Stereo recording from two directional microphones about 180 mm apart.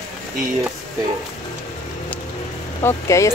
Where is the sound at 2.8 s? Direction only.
15° left (ahead or behind).